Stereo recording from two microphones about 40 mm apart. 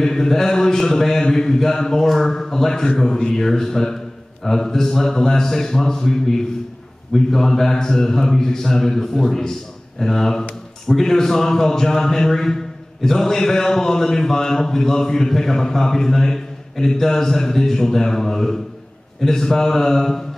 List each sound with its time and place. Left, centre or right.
0.0 s speech: centre